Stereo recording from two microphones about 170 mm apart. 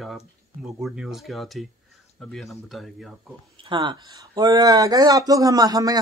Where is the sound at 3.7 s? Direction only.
25° right (ahead or behind).